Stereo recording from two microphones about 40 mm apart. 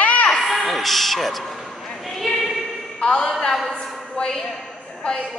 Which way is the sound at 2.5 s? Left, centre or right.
Centre.